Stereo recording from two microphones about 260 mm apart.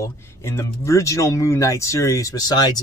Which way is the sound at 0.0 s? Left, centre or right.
Centre.